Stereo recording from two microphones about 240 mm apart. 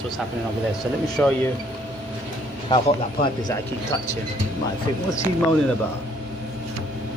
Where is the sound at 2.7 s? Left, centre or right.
Centre.